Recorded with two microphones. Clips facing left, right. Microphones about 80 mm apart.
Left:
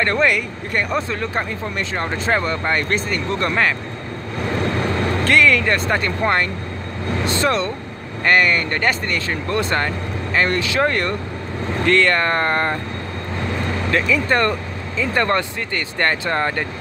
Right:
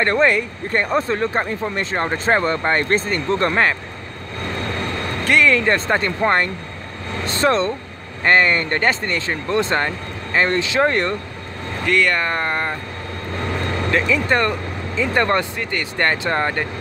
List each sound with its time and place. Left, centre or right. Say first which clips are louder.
0.0 s speech: right 1 dB; right
5.2 s speech: right 1 dB; right
11.9 s speech: left 2 dB; centre
13.9 s speech: even; centre